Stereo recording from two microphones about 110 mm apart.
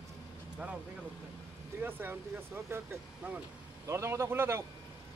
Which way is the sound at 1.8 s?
20° right (ahead or behind).